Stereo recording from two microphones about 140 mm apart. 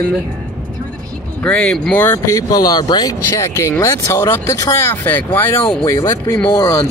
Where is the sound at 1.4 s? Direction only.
10° left (ahead or behind).